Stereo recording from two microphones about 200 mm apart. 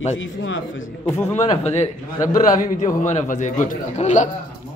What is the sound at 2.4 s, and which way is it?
A man's voice, 40° left (ahead or behind).